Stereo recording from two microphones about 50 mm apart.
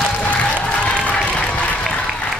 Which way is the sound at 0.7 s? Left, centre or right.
Left.